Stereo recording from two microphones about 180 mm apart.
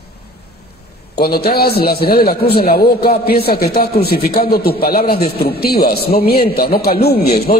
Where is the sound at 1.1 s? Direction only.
60° left (ahead or behind).